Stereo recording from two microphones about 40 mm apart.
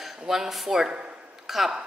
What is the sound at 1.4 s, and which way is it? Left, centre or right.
Speech, centre.